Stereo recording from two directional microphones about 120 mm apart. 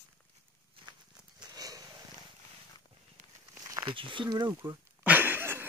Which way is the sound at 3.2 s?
90° right.